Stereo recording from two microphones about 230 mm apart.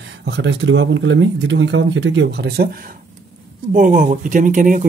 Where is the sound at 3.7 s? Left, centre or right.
Right.